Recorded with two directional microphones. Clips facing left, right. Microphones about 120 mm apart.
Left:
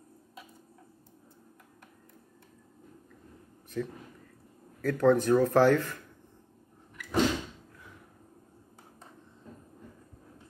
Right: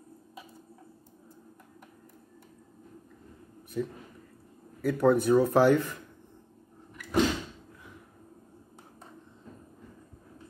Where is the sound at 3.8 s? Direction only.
15° right (ahead or behind).